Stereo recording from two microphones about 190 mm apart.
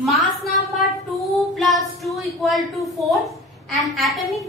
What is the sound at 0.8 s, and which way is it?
Child singing, centre (ahead or behind).